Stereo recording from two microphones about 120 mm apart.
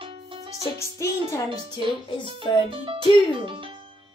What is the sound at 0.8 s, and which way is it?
Music, 25° left (ahead or behind).